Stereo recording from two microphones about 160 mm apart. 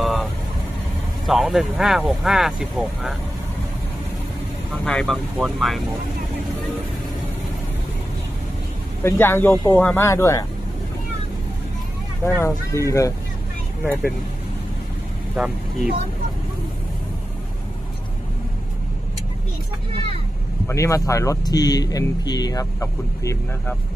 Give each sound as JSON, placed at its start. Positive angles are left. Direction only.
{"t": 0.0, "sound": "vehicle", "side_deg": 0}
{"t": 1.2, "sound": "speech", "side_deg": 0}
{"t": 4.8, "sound": "speech", "side_deg": 5}
{"t": 9.0, "sound": "speech", "side_deg": 15}
{"t": 12.3, "sound": "speech", "side_deg": 15}
{"t": 15.3, "sound": "speech", "side_deg": -5}
{"t": 20.6, "sound": "speech", "side_deg": 20}